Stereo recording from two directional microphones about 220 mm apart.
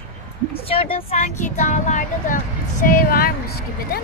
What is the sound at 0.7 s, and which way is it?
Speech, 25° left (ahead or behind).